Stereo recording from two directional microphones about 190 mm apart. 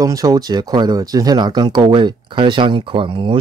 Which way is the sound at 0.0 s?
20° right (ahead or behind).